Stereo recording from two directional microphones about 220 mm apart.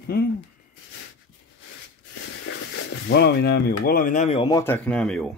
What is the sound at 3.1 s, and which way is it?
Speech, 50° left (ahead or behind).